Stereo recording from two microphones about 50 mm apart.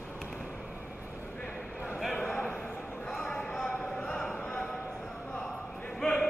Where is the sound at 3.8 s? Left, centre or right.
Centre.